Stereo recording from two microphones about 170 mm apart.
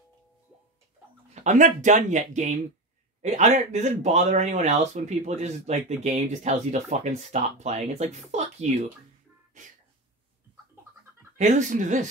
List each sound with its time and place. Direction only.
1.3 s speech: 45° right (ahead or behind)
9.5 s sneeze: 45° right (ahead or behind)
11.3 s speech: 45° right (ahead or behind)